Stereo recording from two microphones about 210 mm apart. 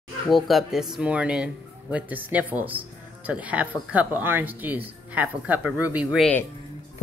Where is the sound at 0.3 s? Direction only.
Centre (ahead or behind).